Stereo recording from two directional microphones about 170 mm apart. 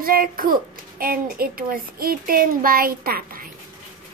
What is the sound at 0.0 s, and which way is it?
A child's voice, 60° right (ahead or behind).